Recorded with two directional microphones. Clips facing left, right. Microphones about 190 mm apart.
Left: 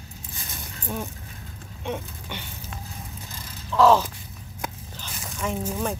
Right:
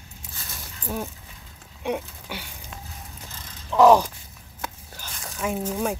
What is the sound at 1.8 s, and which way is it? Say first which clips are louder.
Speech: right 4 dB; 10° right (ahead or behind).